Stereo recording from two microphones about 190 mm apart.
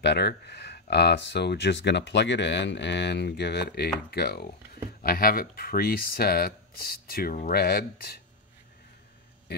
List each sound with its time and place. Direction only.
0.0 s speech: 65° left (ahead or behind)